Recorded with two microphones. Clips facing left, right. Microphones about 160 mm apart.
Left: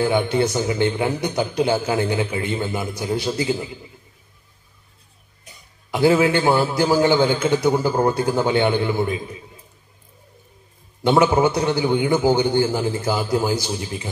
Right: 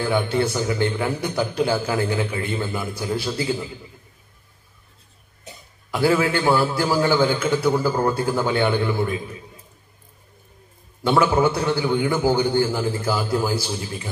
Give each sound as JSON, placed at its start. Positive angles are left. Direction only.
{"t": 0.0, "sound": "a man's voice", "side_deg": 20}
{"t": 5.9, "sound": "a man's voice", "side_deg": 20}
{"t": 11.1, "sound": "a man's voice", "side_deg": 20}